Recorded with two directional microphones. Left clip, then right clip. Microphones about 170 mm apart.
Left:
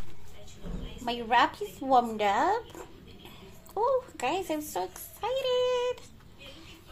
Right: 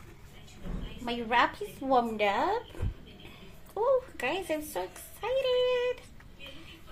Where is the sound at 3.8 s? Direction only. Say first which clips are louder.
Even; 5° left (ahead or behind).